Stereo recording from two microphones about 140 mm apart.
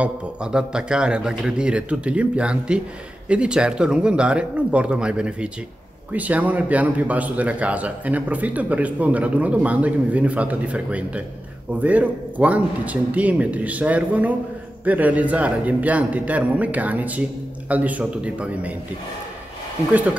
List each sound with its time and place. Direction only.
0.0 s a man's voice: 5° right (ahead or behind)